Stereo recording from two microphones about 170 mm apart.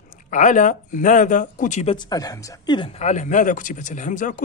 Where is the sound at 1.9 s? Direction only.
25° left (ahead or behind).